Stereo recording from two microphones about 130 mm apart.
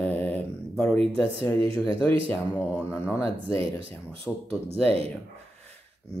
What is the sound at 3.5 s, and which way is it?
Speech, 45° right (ahead or behind).